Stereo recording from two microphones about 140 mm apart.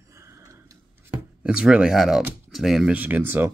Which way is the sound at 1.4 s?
5° right (ahead or behind).